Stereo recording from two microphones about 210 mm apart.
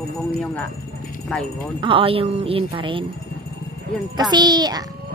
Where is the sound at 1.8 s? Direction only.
25° right (ahead or behind).